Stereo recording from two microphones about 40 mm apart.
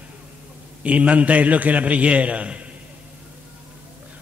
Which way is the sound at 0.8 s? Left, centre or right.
Right.